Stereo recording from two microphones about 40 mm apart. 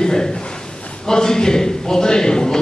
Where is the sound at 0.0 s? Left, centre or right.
Centre.